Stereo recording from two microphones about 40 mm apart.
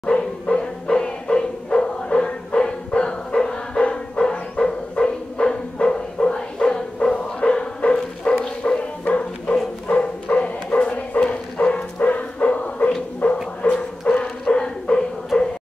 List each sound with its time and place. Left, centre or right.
0.0 s music: left
8.6 s music: left
9.1 s bow-wow: left
9.8 s bow-wow: left
13.2 s dog: left
14.0 s bow-wow: left
14.4 s dog: left
15.3 s music: left